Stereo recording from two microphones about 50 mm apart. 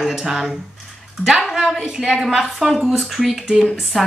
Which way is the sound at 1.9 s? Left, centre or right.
Centre.